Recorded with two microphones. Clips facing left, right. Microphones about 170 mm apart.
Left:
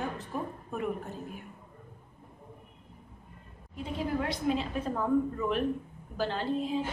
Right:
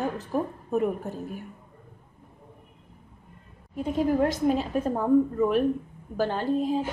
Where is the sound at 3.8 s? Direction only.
45° right (ahead or behind).